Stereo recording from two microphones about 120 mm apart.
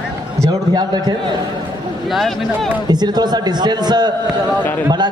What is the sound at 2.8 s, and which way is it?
A man's voice, 35° right (ahead or behind).